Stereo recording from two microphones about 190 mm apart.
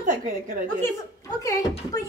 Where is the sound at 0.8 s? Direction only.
15° left (ahead or behind).